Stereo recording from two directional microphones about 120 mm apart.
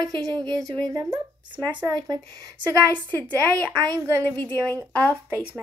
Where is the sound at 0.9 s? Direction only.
25° right (ahead or behind).